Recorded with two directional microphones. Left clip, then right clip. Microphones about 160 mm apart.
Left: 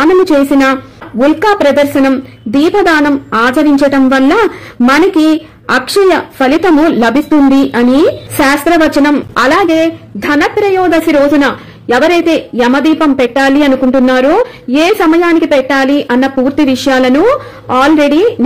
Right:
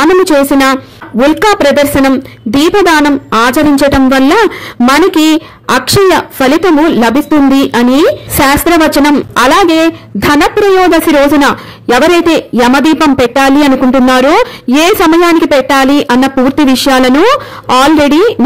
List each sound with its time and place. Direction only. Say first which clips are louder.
0.0 s a woman's voice: right 1 dB; 25° right (ahead or behind)